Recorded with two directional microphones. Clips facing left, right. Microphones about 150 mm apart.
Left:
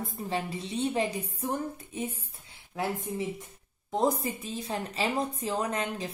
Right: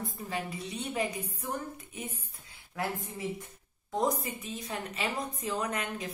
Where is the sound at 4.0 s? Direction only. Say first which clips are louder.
Left 3 dB; 30° left (ahead or behind).